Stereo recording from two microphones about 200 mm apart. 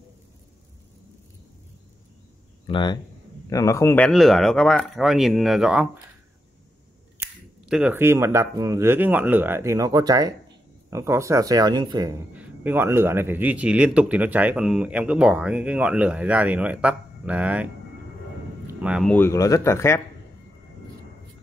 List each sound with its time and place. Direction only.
2.6 s speech: 25° left (ahead or behind); by 5.9 s 5° right (ahead or behind)
7.2 s speech: 5° right (ahead or behind)
18.7 s speech: 5° right (ahead or behind)
19.1 s speech: 15° left (ahead or behind)